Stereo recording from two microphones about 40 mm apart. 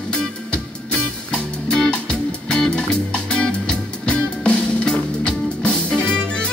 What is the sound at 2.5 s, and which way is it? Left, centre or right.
Music, centre.